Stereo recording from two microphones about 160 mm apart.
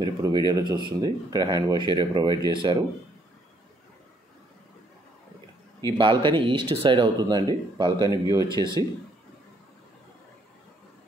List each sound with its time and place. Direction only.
0.0 s speech: 25° right (ahead or behind)
5.9 s speech: 30° right (ahead or behind)